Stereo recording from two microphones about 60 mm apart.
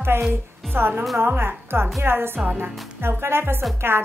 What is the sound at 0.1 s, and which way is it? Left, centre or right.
A woman's voice, right.